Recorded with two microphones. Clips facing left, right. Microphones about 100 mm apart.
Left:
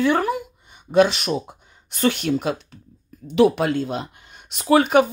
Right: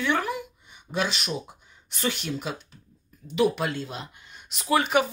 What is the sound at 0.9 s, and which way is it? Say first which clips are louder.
Speech: left 11 dB; 50° left (ahead or behind).